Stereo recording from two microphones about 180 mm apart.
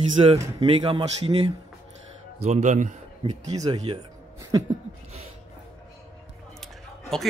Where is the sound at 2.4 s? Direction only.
40° right (ahead or behind).